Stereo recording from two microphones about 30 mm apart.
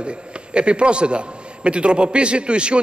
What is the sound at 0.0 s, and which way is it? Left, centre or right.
A man's voice, right.